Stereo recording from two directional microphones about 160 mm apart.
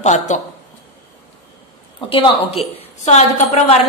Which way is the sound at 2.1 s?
30° left (ahead or behind).